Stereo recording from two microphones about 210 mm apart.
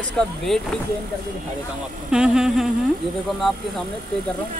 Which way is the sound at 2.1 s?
5° right (ahead or behind).